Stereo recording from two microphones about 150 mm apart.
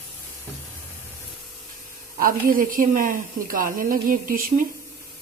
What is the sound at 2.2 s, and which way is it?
A woman's voice, 70° right (ahead or behind).